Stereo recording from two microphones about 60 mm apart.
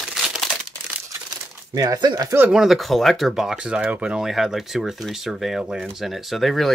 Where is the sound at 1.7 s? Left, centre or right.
Right.